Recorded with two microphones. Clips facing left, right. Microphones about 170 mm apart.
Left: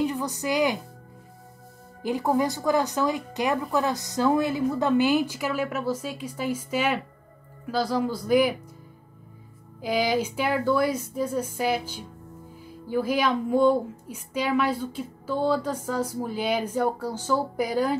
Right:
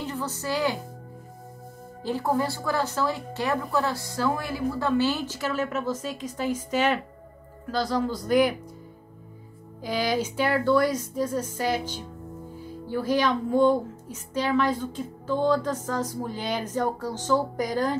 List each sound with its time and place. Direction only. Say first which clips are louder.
0.0 s speech: left 5 dB; 15° left (ahead or behind)
2.0 s a woman's voice: left 2 dB; 15° left (ahead or behind)
9.8 s a woman's voice: left 2 dB; 10° left (ahead or behind)
12.9 s a woman's voice: even; 10° left (ahead or behind)